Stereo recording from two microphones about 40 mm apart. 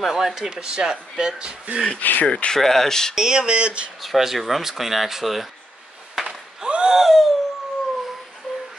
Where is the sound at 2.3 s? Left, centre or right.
Left.